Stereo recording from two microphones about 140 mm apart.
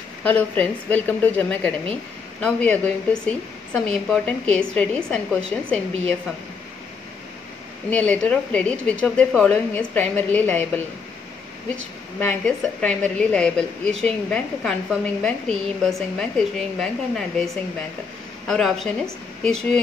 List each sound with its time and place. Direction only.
0.4 s a woman's voice: 10° left (ahead or behind)
7.9 s a woman's voice: 10° left (ahead or behind)
18.5 s a woman's voice: centre (ahead or behind)